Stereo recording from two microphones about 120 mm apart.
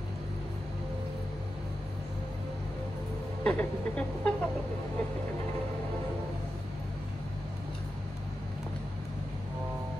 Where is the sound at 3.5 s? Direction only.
10° left (ahead or behind).